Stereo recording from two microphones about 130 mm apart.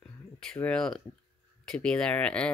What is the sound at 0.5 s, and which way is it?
Speech, 5° left (ahead or behind).